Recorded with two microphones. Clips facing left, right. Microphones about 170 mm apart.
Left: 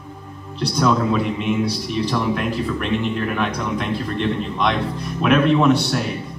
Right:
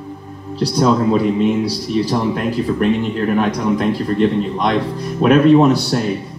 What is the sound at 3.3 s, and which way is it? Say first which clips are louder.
Speech: right 6 dB; 40° right (ahead or behind).